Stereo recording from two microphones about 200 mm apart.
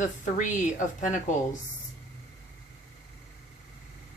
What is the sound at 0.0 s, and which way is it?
A woman's voice, 40° left (ahead or behind).